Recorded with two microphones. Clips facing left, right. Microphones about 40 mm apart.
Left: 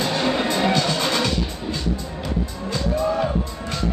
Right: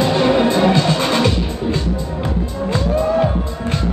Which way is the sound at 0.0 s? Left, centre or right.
Right.